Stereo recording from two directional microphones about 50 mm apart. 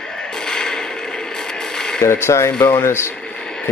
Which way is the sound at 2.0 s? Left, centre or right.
Left.